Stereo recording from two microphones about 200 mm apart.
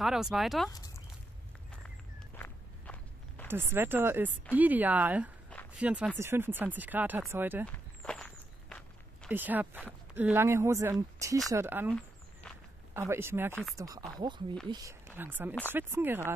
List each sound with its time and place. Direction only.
0.0 s speech: centre (ahead or behind)
0.7 s speech: 20° left (ahead or behind)
2.3 s walk: 10° left (ahead or behind)
3.4 s speech: 10° right (ahead or behind)
7.6 s walk: 5° left (ahead or behind)
9.3 s speech: 10° right (ahead or behind)
12.4 s walk: 5° left (ahead or behind)
12.9 s speech: 10° right (ahead or behind)